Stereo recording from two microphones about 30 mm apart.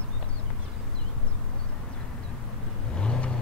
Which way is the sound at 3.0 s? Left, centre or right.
Left.